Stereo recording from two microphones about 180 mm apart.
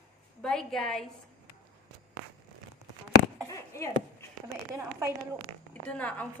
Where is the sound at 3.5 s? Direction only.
15° left (ahead or behind).